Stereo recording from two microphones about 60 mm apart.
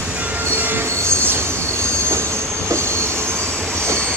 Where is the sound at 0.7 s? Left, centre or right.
Right.